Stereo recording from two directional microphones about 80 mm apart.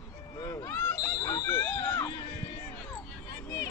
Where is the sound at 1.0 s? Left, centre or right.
Left.